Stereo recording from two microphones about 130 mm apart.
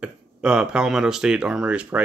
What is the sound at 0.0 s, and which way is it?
Speech, 5° right (ahead or behind).